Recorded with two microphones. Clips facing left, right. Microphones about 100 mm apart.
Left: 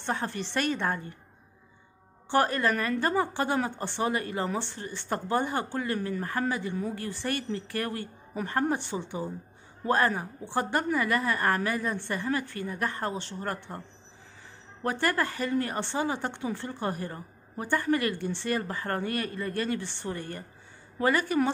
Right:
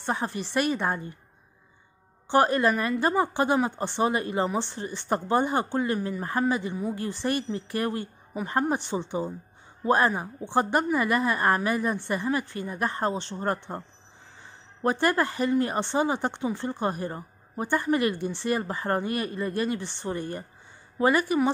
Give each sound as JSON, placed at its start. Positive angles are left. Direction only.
{"t": 0.0, "sound": "a woman's voice", "side_deg": -15}
{"t": 2.2, "sound": "a woman's voice", "side_deg": -20}